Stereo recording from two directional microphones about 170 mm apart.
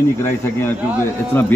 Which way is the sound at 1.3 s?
10° left (ahead or behind).